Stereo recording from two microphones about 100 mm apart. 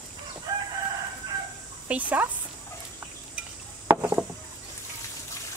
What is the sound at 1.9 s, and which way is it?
Speech, 15° right (ahead or behind).